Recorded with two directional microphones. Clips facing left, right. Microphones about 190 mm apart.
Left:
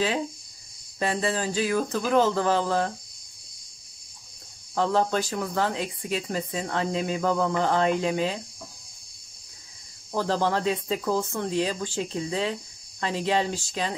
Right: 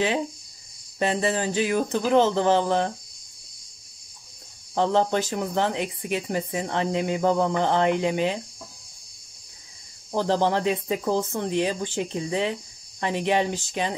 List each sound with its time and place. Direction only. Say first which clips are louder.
0.9 s speech: right 3 dB; 25° right (ahead or behind)
4.7 s speech: right 2 dB; 20° right (ahead or behind)
10.1 s speech: right 3 dB; 20° right (ahead or behind)